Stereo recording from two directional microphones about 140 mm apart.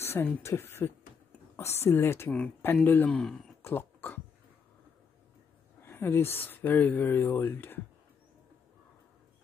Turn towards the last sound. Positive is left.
turn(degrees=15)  # may be behind; listen again after turning